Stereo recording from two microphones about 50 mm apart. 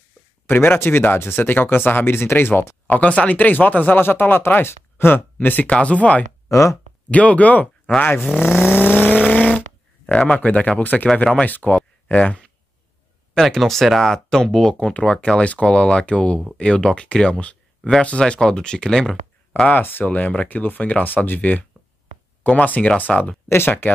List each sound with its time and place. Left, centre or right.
0.5 s speech: left
2.9 s speech: left
5.7 s speech: left
6.5 s speech: left
7.1 s speech: left
8.7 s vehicle: left
9.3 s a sound: left
10.1 s speech: left
10.8 s speech: left
13.3 s speech: centre
18.2 s speech: centre
19.7 s speech: left
20.1 s speech: left
23.5 s speech: left